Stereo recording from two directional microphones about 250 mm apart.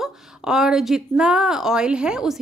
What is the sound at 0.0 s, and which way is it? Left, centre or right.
Speech, centre.